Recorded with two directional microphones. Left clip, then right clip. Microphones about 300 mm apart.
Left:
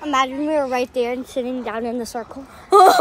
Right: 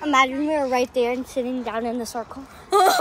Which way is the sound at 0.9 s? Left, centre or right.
Left.